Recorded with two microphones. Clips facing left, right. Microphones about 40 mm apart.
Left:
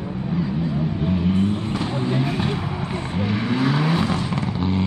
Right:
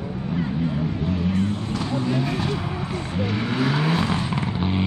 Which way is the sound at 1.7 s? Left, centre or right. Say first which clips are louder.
Left 1 dB; left.